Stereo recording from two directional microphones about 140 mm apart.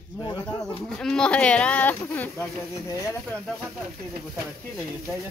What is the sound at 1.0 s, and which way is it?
Speech, 5° left (ahead or behind).